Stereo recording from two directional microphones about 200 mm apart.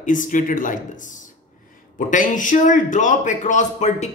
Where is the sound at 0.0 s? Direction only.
40° left (ahead or behind).